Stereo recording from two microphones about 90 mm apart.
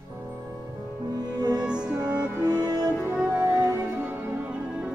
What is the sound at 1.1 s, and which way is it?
Music, 50° right (ahead or behind).